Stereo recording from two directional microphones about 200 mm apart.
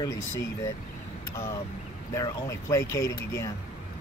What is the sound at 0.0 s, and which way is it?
Speech, 15° left (ahead or behind).